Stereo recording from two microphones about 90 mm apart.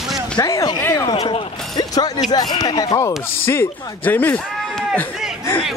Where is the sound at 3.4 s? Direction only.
25° left (ahead or behind).